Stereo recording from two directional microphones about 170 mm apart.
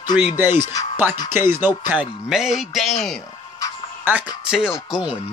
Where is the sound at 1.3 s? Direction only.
15° right (ahead or behind); by 3.2 s centre (ahead or behind).